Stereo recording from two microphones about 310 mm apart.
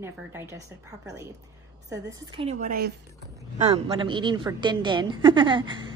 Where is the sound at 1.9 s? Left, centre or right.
Centre.